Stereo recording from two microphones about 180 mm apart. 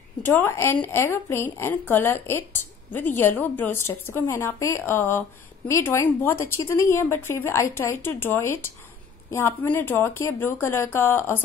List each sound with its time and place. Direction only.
0.2 s a woman's voice: 15° left (ahead or behind)